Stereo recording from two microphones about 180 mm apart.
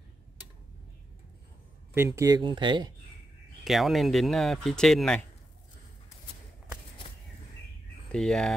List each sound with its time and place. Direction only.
2.0 s speech: 15° right (ahead or behind)
3.6 s speech: centre (ahead or behind)
8.1 s speech: 5° left (ahead or behind)